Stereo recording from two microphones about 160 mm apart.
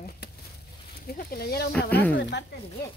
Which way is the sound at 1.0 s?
70° left (ahead or behind).